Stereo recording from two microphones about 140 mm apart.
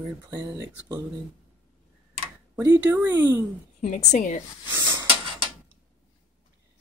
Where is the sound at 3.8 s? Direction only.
65° left (ahead or behind).